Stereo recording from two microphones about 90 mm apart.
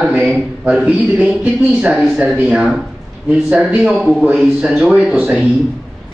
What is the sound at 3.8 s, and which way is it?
A man's voice, 10° right (ahead or behind).